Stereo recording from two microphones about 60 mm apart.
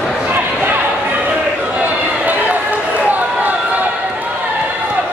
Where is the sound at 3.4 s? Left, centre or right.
Right.